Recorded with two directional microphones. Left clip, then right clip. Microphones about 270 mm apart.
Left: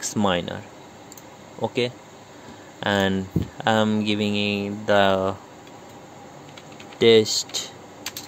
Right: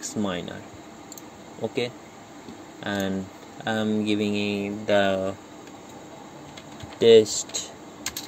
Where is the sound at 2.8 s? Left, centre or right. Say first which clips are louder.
Left 7 dB; left.